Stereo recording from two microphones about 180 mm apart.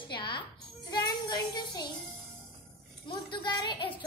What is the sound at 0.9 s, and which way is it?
Music, 25° left (ahead or behind).